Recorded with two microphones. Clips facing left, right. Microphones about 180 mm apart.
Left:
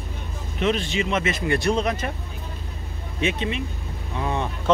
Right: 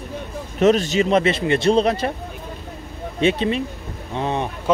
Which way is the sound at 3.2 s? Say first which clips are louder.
Right 6 dB; 35° right (ahead or behind).